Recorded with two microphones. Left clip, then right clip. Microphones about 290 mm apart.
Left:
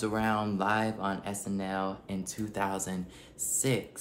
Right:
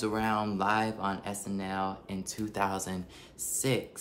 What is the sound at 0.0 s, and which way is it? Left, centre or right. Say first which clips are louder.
Speech: even; centre.